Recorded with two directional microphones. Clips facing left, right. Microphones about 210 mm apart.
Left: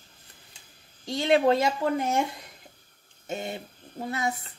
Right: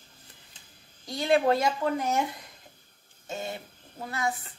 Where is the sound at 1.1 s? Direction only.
25° left (ahead or behind).